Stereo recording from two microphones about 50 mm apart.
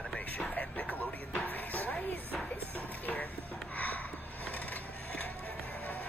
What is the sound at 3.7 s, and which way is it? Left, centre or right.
Music, left.